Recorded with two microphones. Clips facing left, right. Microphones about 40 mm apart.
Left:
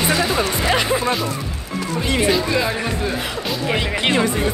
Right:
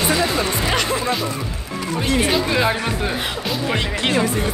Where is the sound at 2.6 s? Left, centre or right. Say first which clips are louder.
Right 2 dB; right.